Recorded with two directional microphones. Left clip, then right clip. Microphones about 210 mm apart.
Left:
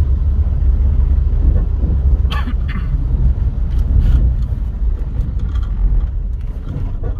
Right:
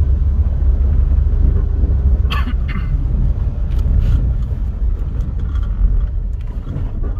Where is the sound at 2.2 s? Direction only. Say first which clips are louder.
Right 2 dB; 20° right (ahead or behind).